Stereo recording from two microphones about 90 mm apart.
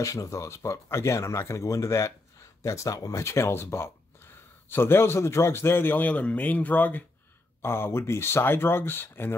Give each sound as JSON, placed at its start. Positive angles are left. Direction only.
{"t": 0.0, "sound": "a man's voice", "side_deg": 35}